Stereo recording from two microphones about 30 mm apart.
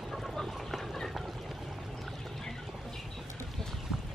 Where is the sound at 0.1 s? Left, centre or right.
Centre.